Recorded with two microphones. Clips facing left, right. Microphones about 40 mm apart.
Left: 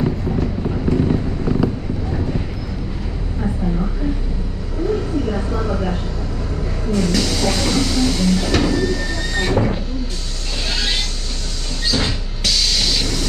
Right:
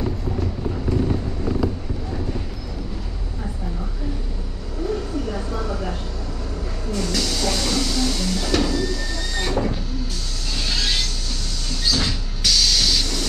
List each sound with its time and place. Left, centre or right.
0.0 s vehicle: left
4.8 s vehicle: left
6.9 s train: left
10.7 s vehicle: centre